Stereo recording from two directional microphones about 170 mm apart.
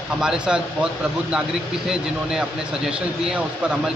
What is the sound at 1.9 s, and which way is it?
Speech, 5° right (ahead or behind).